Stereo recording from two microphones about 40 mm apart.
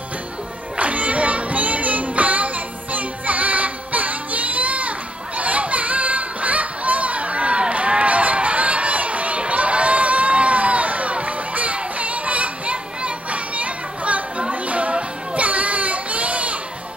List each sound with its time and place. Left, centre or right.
0.7 s music: right